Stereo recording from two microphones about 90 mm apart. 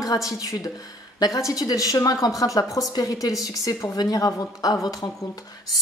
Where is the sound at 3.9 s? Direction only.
45° left (ahead or behind).